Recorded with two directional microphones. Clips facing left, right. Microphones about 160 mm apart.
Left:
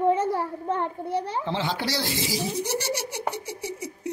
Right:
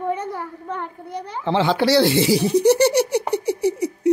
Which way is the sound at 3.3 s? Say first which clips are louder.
Right 11 dB; 65° right (ahead or behind).